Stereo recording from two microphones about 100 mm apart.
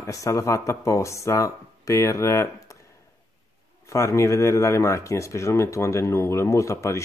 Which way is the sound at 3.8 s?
30° left (ahead or behind).